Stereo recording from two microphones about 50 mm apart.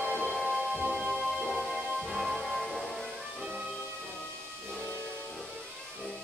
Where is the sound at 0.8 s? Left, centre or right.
Centre.